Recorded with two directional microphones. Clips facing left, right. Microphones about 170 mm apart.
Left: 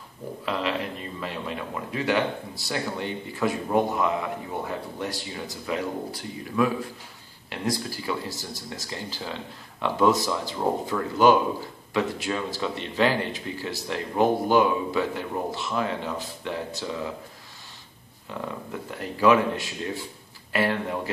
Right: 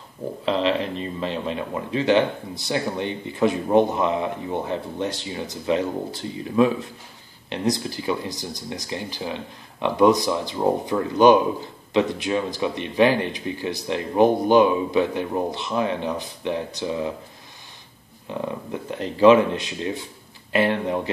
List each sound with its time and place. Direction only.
0.5 s speech: 25° right (ahead or behind)
18.3 s speech: 20° right (ahead or behind)